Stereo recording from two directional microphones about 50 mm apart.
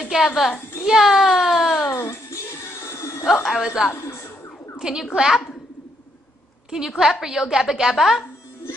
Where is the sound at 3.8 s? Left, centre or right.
Centre.